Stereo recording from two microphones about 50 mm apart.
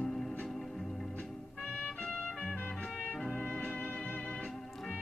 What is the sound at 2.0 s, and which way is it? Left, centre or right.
Music, centre.